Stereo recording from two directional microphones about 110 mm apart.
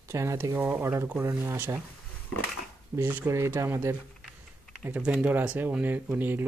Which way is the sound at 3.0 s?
25° right (ahead or behind).